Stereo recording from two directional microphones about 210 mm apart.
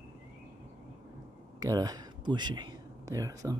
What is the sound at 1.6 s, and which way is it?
Speech, 20° right (ahead or behind).